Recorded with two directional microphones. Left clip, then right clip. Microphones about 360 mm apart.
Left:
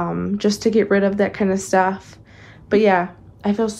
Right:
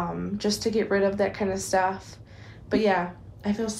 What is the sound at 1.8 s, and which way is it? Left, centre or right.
A woman's voice, centre.